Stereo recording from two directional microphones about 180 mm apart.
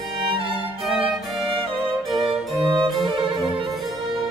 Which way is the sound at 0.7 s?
Centre (ahead or behind).